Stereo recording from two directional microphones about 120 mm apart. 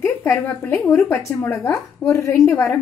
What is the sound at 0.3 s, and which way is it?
A woman's voice, 25° left (ahead or behind).